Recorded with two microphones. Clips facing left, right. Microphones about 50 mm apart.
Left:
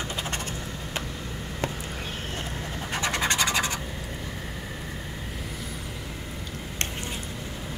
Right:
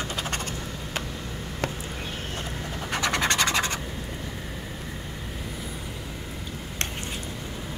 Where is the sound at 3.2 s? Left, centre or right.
Centre.